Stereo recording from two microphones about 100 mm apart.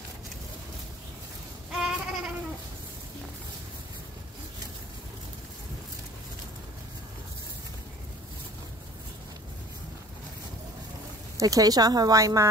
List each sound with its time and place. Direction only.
1.7 s goat: 5° right (ahead or behind)
11.3 s speech: 35° right (ahead or behind)